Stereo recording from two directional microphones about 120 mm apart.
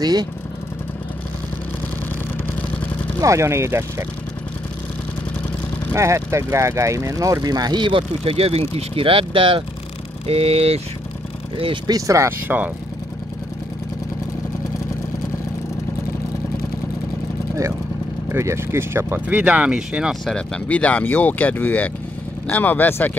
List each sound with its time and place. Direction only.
0.0 s speech: 35° right (ahead or behind)
3.2 s speech: 25° right (ahead or behind)
5.9 s speech: 25° right (ahead or behind)
8.2 s speech: 55° right (ahead or behind)
11.9 s speech: 25° right (ahead or behind)
18.3 s speech: 25° right (ahead or behind); by 20.2 s 5° right (ahead or behind)
20.2 s speech: 10° left (ahead or behind)